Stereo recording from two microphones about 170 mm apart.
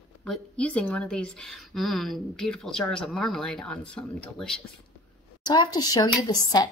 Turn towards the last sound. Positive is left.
turn(degrees=20)  # may be behind; listen again after turning